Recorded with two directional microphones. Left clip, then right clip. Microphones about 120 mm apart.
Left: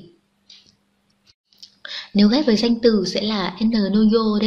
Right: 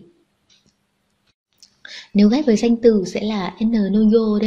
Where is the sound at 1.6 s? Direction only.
60° right (ahead or behind); by 4.5 s 40° right (ahead or behind).